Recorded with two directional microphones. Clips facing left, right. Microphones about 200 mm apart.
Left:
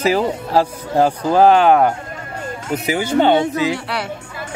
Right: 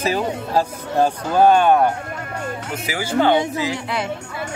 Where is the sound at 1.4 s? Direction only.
90° left.